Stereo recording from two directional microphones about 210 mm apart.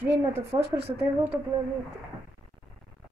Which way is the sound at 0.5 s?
25° right (ahead or behind).